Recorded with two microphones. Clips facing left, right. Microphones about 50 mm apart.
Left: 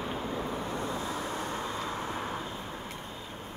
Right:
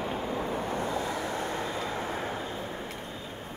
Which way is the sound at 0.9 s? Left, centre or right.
Right.